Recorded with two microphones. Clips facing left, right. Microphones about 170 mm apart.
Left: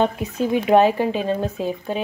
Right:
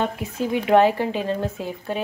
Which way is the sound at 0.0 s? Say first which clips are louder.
Left 4 dB; 20° left (ahead or behind).